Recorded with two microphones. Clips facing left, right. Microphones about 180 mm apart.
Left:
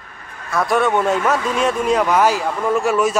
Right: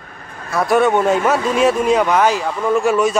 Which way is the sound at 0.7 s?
Centre (ahead or behind).